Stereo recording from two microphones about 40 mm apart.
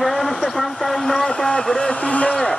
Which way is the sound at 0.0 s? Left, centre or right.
Centre.